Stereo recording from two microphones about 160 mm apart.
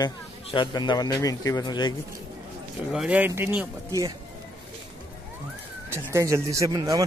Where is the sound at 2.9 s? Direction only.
5° right (ahead or behind).